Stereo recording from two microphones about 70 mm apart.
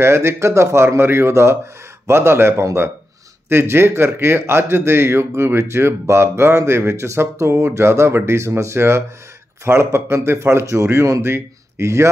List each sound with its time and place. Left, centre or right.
0.0 s speech: right